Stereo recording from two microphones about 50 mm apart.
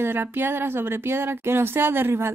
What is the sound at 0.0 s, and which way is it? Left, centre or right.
Speech, right.